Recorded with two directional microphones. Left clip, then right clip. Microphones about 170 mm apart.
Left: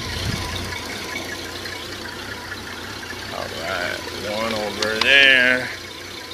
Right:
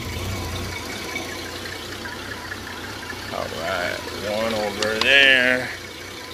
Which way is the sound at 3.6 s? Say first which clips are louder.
Even; 20° right (ahead or behind).